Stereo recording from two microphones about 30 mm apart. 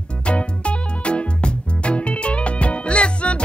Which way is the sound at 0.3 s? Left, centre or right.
Left.